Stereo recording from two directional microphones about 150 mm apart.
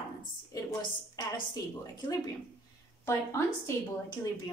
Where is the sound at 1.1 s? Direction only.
30° left (ahead or behind).